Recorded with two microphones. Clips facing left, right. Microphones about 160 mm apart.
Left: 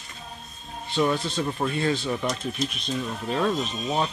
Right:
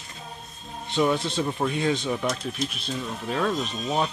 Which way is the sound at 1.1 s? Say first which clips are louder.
Right 1 dB; 25° right (ahead or behind).